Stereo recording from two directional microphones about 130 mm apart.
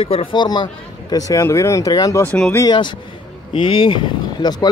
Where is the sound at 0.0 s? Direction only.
45° left (ahead or behind).